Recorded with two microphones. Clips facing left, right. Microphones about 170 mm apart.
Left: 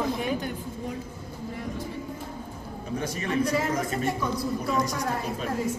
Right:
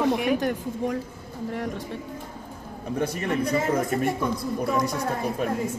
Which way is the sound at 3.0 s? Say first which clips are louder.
Right 2 dB; 55° right (ahead or behind).